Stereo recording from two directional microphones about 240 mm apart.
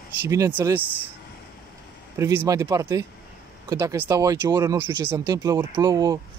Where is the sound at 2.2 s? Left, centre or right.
Centre.